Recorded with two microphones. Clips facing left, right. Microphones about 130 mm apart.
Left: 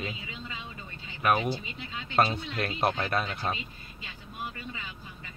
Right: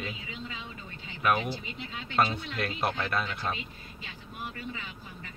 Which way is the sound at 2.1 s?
35° left (ahead or behind).